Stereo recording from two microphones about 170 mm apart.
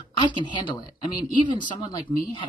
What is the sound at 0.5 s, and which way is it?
Speech, 25° left (ahead or behind).